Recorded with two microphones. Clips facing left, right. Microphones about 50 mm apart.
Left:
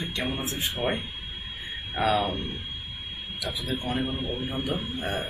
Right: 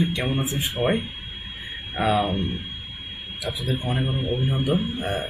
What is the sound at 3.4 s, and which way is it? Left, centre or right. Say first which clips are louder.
Speech: right 4 dB; centre.